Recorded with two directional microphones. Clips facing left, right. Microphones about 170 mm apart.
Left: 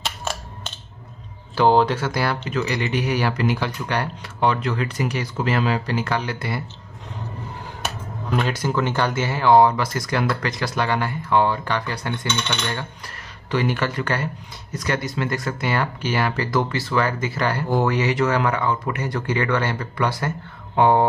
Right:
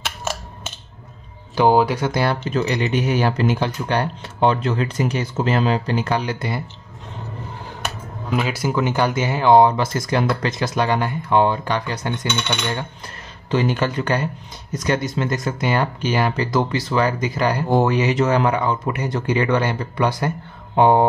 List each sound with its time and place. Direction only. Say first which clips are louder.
0.0 s a sound: right 1 dB; 5° right (ahead or behind)
1.5 s speech: right 1 dB; 15° right (ahead or behind)
8.3 s speech: right 1 dB; 5° right (ahead or behind)